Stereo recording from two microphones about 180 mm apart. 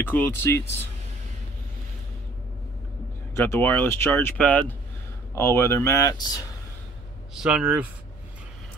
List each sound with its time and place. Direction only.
0.0 s speech: 10° left (ahead or behind)
3.3 s speech: 15° left (ahead or behind)
7.3 s speech: 5° right (ahead or behind)